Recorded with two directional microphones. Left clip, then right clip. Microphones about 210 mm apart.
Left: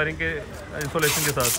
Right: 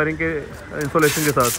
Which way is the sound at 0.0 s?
Centre (ahead or behind).